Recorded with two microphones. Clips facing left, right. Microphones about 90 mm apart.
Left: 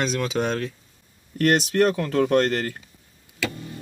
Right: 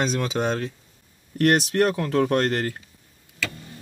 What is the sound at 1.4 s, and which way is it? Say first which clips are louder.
Speech: even; 35° right (ahead or behind).